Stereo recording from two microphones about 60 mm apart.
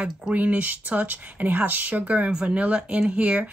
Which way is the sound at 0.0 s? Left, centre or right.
Right.